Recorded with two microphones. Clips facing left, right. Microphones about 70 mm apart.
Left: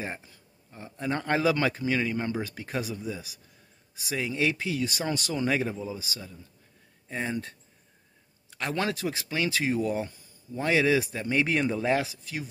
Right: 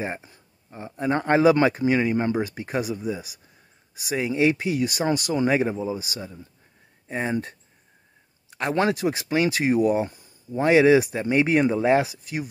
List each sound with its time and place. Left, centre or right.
0.0 s speech: right
2.8 s speech: centre
8.5 s speech: right